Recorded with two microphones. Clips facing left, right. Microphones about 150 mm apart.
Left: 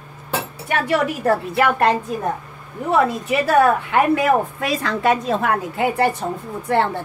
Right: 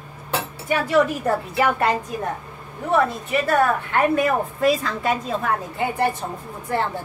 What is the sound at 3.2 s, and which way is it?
A woman's voice, 80° left.